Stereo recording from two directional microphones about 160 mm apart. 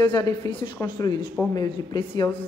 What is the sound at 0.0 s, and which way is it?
A woman's voice, 25° left (ahead or behind).